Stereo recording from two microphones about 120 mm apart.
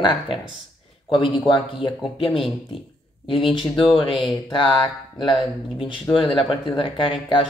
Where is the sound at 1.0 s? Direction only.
45° left (ahead or behind).